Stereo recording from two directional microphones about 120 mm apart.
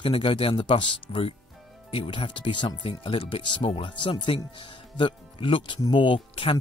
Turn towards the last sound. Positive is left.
turn(degrees=45)  # may be behind; listen again after turning